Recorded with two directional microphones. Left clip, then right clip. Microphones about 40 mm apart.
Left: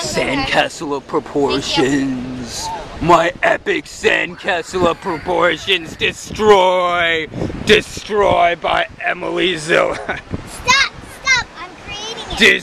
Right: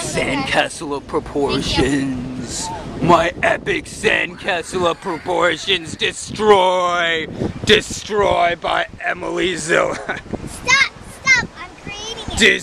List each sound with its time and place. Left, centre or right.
0.0 s a sound: centre
0.5 s speech: centre
2.4 s a man's voice: centre
6.3 s a man's voice: centre
6.8 s speech: right
7.1 s a man's voice: centre
8.3 s speech: right
9.6 s speech: centre
10.6 s children playing: right
11.9 s a sound: right